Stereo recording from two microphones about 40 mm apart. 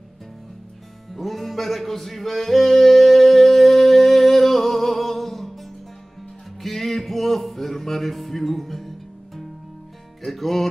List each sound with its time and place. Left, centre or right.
1.1 s music: centre